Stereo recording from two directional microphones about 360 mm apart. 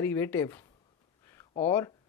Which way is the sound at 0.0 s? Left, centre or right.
Centre.